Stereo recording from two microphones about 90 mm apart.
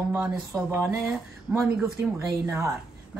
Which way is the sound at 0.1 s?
25° right (ahead or behind).